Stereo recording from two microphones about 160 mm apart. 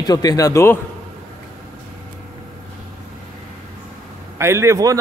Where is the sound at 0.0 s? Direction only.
25° left (ahead or behind).